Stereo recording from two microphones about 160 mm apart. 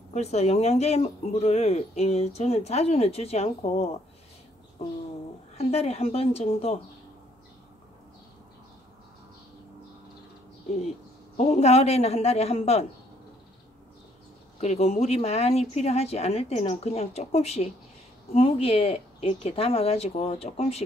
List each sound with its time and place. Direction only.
0.1 s speech: 45° left (ahead or behind)
5.6 s speech: 40° left (ahead or behind)
11.3 s speech: 40° left (ahead or behind)
14.6 s speech: 40° left (ahead or behind)